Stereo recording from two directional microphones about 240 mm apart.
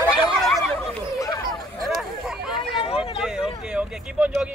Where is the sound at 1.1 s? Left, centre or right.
Centre.